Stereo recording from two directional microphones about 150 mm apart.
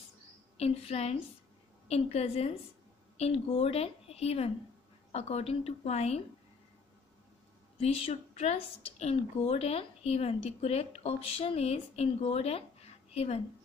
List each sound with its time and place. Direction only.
0.6 s speech: 40° left (ahead or behind)
7.8 s speech: 45° left (ahead or behind)